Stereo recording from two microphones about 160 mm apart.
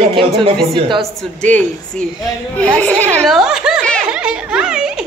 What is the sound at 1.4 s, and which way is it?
Speech, 10° left (ahead or behind).